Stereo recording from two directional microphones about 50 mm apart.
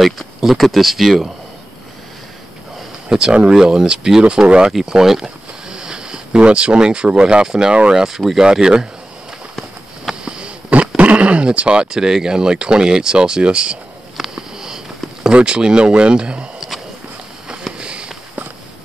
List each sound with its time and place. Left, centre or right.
0.0 s speech: centre
3.1 s speech: centre
7.9 s speech: centre
10.2 s wild animals: centre
11.0 s speech: right
14.1 s sniff: centre
15.3 s speech: centre
16.5 s walk: centre
17.7 s a sound: centre